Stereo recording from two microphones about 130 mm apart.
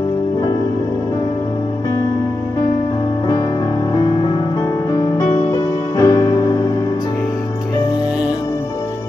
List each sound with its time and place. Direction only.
3.9 s music: 25° left (ahead or behind)